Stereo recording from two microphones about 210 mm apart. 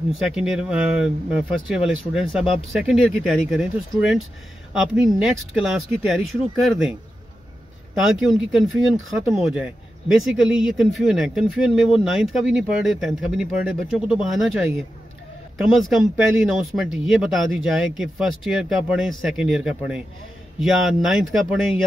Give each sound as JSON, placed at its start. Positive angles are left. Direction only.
{"t": 0.1, "sound": "speech", "side_deg": 0}
{"t": 8.0, "sound": "speech", "side_deg": 0}
{"t": 15.5, "sound": "speech", "side_deg": 0}